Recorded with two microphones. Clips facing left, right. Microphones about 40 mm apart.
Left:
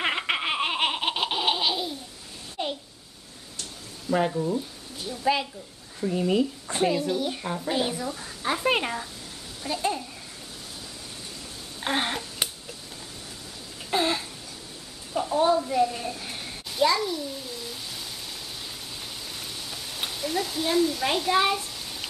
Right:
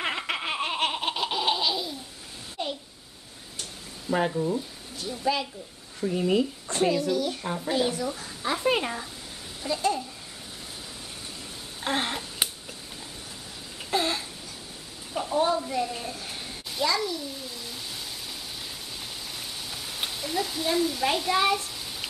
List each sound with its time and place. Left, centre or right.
0.3 s laughter: left
2.6 s a sound: centre
4.1 s speech: centre
5.2 s speech: left
5.9 s speech: centre
6.7 s a woman's voice: centre
7.4 s speech: centre
7.7 s a woman's voice: centre
11.8 s a sound: centre
12.4 s tick-tock: centre
13.8 s a sound: centre
15.1 s a woman's voice: centre
16.9 s babbling: centre
19.3 s a sound: centre